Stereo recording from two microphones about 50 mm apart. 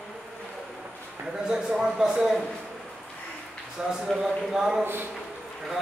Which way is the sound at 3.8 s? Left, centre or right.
Centre.